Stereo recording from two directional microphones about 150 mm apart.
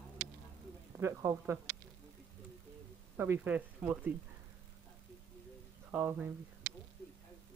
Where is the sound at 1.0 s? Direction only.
20° right (ahead or behind).